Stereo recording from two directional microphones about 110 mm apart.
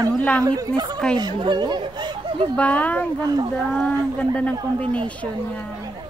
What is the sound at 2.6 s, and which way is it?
Speech, 15° left (ahead or behind).